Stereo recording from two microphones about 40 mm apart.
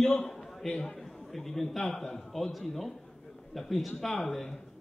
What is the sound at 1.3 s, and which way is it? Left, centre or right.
A man's voice, centre.